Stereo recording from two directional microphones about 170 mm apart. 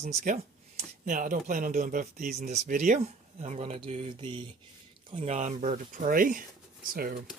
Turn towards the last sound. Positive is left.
turn(degrees=-55)  # may be behind; listen again after turning